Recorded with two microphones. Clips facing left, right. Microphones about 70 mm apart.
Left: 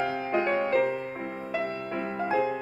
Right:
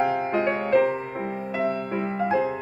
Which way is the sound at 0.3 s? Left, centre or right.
Centre.